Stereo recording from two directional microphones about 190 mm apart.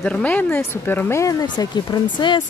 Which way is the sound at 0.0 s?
5° left (ahead or behind).